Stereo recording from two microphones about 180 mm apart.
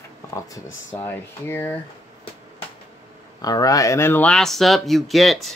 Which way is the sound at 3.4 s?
20° left (ahead or behind).